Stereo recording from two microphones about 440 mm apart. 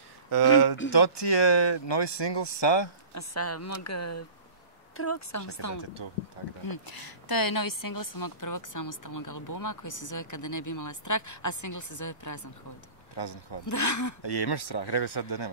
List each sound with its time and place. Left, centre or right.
0.3 s a sound: left
0.8 s speech: left
3.2 s speech: left
6.6 s a woman's voice: left
13.1 s speech: left
13.7 s speech: left
14.2 s speech: left